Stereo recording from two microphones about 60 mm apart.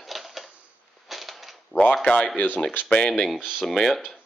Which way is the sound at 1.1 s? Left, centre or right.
Centre.